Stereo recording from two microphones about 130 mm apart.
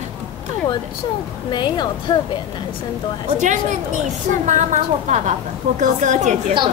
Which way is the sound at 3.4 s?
70° right (ahead or behind).